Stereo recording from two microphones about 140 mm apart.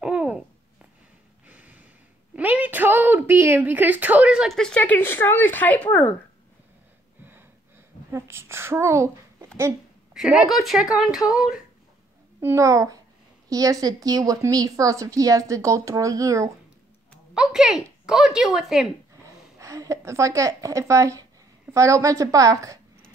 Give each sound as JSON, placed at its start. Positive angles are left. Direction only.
{"t": 0.0, "sound": "babbling", "side_deg": -10}
{"t": 1.5, "sound": "snort", "side_deg": -10}
{"t": 2.3, "sound": "a sound", "side_deg": -10}
{"t": 4.6, "sound": "speech", "side_deg": 5}
{"t": 8.1, "sound": "speech", "side_deg": -15}
{"t": 10.1, "sound": "speech", "side_deg": -5}
{"t": 12.4, "sound": "a woman's voice", "side_deg": -20}
{"t": 17.3, "sound": "speech", "side_deg": -5}
{"t": 19.2, "sound": "a woman's voice", "side_deg": -25}